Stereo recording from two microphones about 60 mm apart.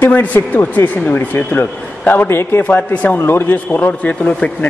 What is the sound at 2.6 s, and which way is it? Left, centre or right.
Speech, left.